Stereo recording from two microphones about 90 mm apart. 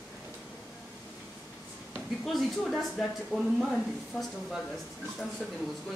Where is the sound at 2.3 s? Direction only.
Centre (ahead or behind).